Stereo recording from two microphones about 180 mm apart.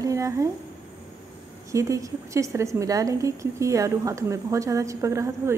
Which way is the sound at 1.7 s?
15° right (ahead or behind).